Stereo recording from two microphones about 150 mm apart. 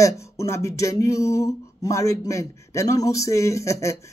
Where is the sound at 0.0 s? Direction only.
20° left (ahead or behind).